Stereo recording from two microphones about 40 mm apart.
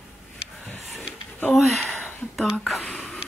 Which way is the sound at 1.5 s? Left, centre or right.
Centre.